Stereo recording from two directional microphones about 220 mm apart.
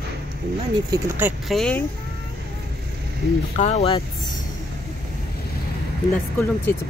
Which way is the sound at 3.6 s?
30° left (ahead or behind).